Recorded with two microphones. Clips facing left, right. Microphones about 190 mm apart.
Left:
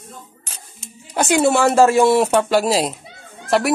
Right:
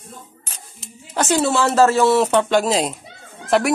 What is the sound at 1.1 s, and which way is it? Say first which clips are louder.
A child's voice: left 2 dB; 10° left (ahead or behind).